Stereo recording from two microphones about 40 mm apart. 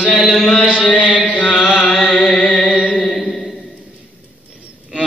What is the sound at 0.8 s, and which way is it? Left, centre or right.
Chant, left.